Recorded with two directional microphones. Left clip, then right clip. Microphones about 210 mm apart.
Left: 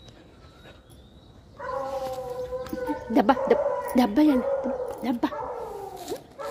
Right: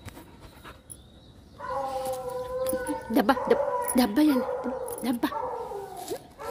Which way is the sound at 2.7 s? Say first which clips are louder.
Right 1 dB; 5° left (ahead or behind).